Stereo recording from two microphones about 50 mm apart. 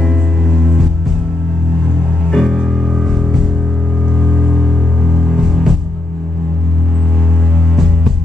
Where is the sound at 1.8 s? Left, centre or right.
Centre.